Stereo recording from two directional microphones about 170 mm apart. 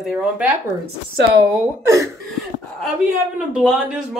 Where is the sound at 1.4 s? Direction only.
20° right (ahead or behind).